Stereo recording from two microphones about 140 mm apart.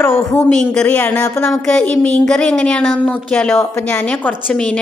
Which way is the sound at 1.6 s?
10° left (ahead or behind).